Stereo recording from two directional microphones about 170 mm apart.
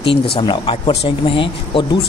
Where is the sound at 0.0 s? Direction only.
30° left (ahead or behind).